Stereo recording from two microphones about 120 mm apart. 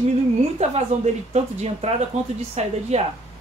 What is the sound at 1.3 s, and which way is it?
A woman's voice, 60° right (ahead or behind).